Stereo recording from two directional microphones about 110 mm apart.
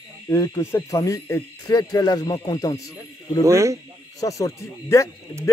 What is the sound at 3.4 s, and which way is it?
Speech, 25° right (ahead or behind).